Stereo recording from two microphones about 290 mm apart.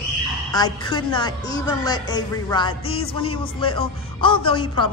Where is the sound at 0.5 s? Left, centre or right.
Centre.